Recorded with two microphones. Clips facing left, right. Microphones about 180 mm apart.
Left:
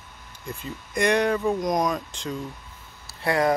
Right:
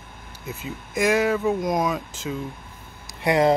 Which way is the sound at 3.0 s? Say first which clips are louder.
Right 3 dB; 20° right (ahead or behind).